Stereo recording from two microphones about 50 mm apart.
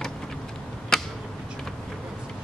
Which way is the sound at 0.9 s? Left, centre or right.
Centre.